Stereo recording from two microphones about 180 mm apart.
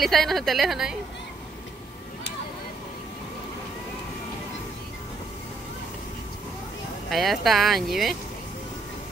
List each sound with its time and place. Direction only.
0.0 s speech: centre (ahead or behind)
7.1 s speech: centre (ahead or behind)